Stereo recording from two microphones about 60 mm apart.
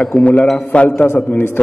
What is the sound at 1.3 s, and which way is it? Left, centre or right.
Speech, left.